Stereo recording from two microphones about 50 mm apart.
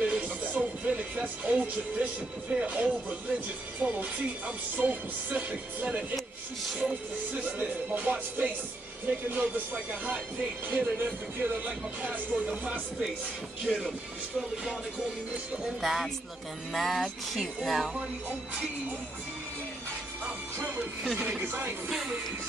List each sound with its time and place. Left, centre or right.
0.0 s music: right
2.5 s speech: right
10.7 s speech: right
12.0 s music: right
13.7 s music: centre
15.8 s music: centre
21.4 s speech: right
21.8 s music: centre